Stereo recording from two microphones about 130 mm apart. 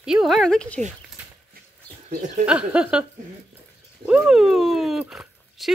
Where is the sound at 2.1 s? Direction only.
75° right (ahead or behind).